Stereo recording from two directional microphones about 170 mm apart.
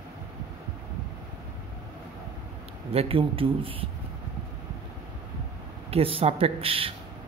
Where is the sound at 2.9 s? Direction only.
35° right (ahead or behind).